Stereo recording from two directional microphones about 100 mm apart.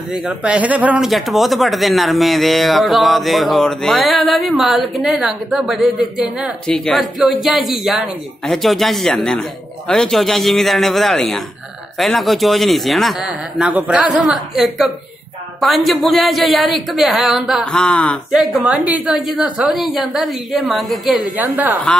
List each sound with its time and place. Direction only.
0.1 s a woman's voice: 10° right (ahead or behind)
1.0 s speech: centre (ahead or behind)
6.7 s speech: 5° left (ahead or behind)
13.6 s a woman's voice: 15° right (ahead or behind); by 18.2 s 10° left (ahead or behind)
18.3 s speech: 5° right (ahead or behind)
18.7 s a woman's voice: 15° right (ahead or behind)
19.1 s speech: centre (ahead or behind)
21.4 s a woman's voice: 15° right (ahead or behind)